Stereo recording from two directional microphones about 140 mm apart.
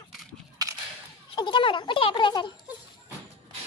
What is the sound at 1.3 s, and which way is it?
Speech, 35° left (ahead or behind).